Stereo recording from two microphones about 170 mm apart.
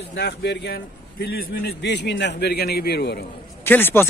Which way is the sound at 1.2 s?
70° left (ahead or behind).